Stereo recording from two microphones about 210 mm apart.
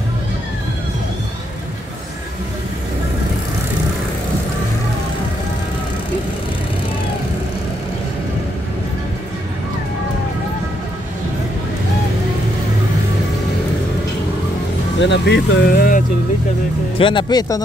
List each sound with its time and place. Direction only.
15.0 s speech: 55° left (ahead or behind)
17.0 s speech: 20° left (ahead or behind)